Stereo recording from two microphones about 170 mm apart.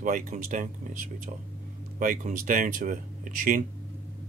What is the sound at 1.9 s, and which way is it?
Speech, 50° right (ahead or behind).